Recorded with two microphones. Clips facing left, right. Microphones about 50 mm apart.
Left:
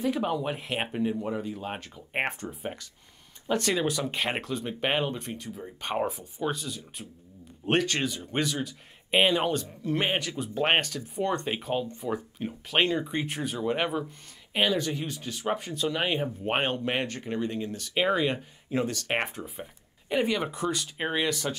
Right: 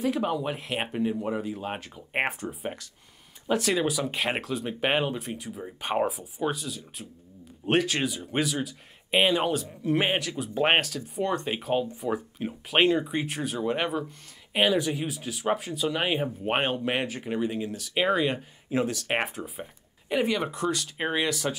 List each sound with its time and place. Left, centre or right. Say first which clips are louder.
0.0 s speech: right 1 dB; centre